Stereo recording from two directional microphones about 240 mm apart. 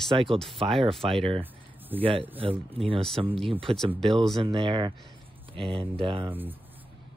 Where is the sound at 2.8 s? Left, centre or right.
Right.